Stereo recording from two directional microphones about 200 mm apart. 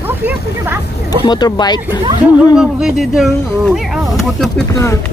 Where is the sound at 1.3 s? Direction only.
20° left (ahead or behind).